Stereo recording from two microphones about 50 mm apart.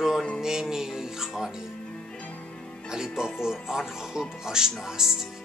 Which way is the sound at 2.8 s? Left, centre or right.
Centre.